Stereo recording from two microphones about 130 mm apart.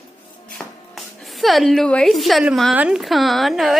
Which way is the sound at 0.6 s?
Centre (ahead or behind).